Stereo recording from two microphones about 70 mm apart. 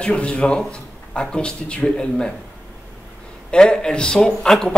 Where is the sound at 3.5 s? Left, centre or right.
Centre.